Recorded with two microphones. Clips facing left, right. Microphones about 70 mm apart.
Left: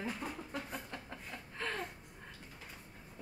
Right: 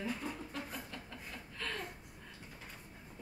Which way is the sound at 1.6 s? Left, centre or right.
Left.